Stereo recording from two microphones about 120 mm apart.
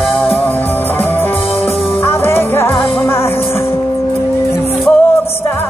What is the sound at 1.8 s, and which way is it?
Music, 20° left (ahead or behind).